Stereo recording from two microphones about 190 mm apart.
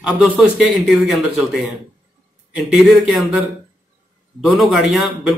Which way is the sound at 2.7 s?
Centre (ahead or behind).